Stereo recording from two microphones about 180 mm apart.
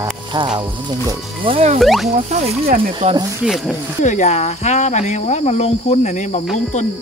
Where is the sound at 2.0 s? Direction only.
35° right (ahead or behind).